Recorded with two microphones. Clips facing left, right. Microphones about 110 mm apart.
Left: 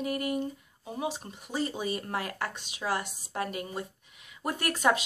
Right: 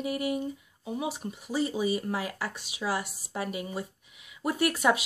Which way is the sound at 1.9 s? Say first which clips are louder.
Right 3 dB; 50° left (ahead or behind).